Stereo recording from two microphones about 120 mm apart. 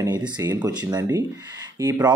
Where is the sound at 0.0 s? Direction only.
30° right (ahead or behind).